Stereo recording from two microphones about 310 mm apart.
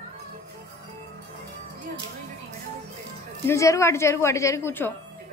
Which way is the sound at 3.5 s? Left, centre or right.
Centre.